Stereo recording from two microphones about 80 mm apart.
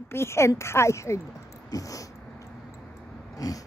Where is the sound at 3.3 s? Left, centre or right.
Left.